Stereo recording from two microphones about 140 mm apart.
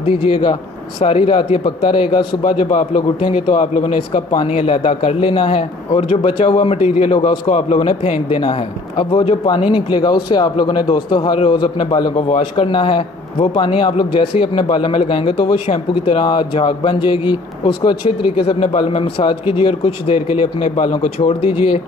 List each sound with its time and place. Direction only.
0.0 s a man's voice: 40° left (ahead or behind)
2.6 s a man's voice: 55° left (ahead or behind)
8.4 s a man's voice: 35° left (ahead or behind)
12.3 s a man's voice: 45° left (ahead or behind)